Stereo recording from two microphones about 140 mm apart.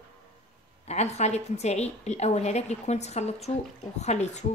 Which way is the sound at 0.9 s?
50° left (ahead or behind).